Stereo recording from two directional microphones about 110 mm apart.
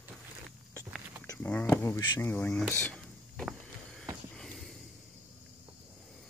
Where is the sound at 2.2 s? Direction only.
15° left (ahead or behind).